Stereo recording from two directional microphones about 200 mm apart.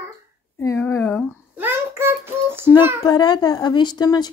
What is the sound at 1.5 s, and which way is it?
Child singing, 10° right (ahead or behind).